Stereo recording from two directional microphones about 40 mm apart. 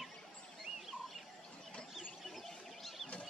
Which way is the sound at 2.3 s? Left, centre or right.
Centre.